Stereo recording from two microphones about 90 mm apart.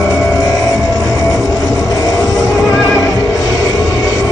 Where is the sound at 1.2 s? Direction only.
40° left (ahead or behind).